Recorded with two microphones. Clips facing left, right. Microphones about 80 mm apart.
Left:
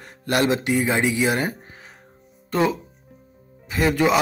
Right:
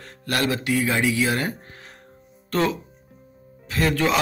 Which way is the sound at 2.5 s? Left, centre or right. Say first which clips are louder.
Left 2 dB; centre.